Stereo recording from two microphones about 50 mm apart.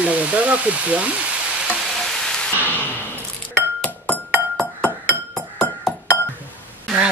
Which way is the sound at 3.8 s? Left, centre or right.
Left.